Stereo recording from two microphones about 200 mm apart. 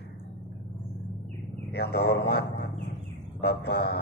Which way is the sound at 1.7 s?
55° left (ahead or behind).